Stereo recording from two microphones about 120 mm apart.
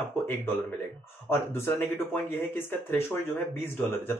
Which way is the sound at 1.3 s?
20° left (ahead or behind).